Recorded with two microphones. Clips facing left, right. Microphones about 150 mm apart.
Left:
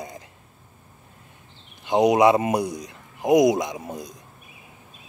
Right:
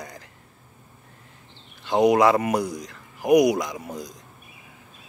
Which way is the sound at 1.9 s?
20° left (ahead or behind).